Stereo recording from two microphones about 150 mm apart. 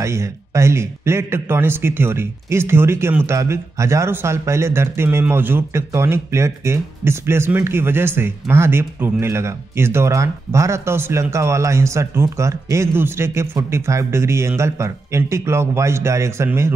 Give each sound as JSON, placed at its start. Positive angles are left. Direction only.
{"t": 0.0, "sound": "speech", "side_deg": -20}